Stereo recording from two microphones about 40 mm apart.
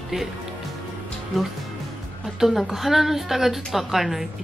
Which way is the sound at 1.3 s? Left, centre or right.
Centre.